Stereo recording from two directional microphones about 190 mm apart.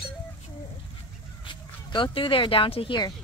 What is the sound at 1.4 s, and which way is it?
Speech, 25° left (ahead or behind).